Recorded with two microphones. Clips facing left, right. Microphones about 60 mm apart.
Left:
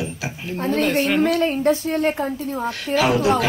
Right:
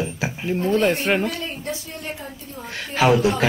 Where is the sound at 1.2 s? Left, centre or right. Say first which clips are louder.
Left 9 dB; left.